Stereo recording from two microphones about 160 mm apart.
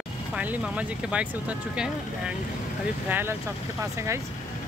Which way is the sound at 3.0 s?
10° right (ahead or behind).